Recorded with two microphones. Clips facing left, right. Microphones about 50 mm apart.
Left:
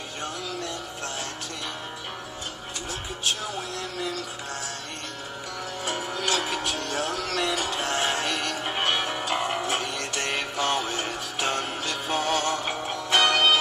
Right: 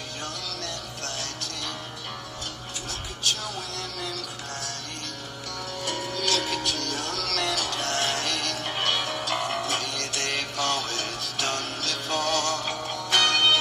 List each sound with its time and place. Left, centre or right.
0.2 s music: centre
3.3 s a sound: centre
5.9 s music: centre